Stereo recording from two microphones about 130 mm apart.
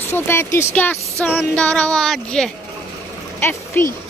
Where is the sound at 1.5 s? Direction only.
10° left (ahead or behind).